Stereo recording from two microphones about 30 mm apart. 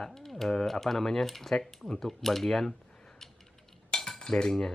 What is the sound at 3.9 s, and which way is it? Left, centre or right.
Cutlery, centre.